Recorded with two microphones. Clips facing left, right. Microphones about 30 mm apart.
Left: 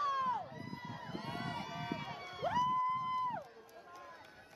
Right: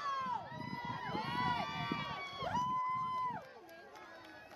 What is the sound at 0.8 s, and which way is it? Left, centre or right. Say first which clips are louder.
Crowd: right 7 dB; right.